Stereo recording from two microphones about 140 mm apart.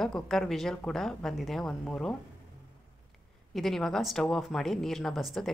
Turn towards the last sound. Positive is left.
turn(degrees=0)  # may be behind; listen again after turning